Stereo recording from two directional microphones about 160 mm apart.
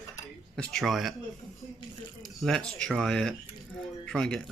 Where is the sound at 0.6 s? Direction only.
Centre (ahead or behind).